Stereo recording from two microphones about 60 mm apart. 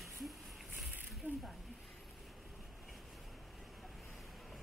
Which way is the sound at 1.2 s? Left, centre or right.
Right.